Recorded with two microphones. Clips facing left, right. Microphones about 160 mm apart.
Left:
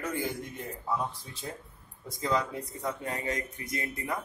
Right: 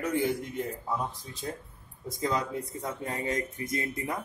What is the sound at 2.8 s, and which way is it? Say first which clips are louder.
Speech: left 1 dB; 25° right (ahead or behind).